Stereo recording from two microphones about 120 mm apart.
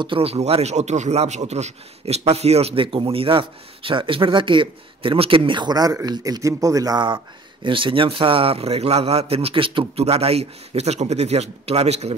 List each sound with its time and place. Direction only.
0.0 s speech: 50° right (ahead or behind)
7.6 s a man's voice: 45° right (ahead or behind); by 12.2 s 60° right (ahead or behind)